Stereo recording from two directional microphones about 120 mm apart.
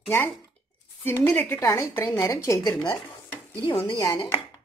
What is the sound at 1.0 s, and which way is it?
A woman's voice, 20° left (ahead or behind).